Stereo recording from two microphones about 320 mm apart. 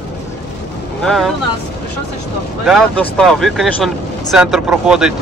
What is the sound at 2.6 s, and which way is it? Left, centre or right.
Speech, centre.